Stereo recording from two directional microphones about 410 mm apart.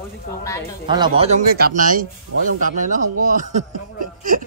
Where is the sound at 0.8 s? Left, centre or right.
Centre.